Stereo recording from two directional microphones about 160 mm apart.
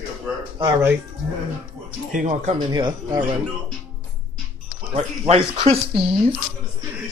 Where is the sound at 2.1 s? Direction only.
50° right (ahead or behind).